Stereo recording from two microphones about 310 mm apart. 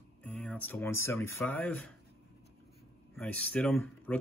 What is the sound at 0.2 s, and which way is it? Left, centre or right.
Speech, centre.